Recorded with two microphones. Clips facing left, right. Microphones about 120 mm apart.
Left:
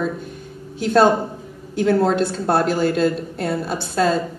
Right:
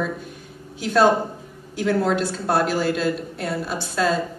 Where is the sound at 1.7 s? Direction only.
25° left (ahead or behind).